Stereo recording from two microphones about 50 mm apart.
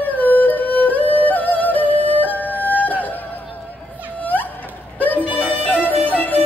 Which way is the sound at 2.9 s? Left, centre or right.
Left.